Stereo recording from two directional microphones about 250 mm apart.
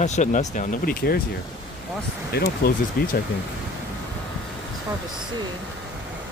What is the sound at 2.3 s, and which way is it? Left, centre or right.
Speech, left.